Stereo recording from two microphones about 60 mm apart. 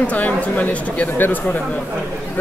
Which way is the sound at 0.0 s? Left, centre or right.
Left.